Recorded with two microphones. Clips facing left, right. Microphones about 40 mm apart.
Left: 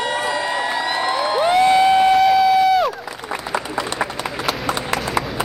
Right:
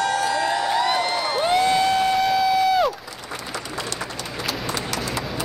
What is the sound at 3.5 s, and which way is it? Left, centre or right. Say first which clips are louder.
Applause: left 8 dB; left.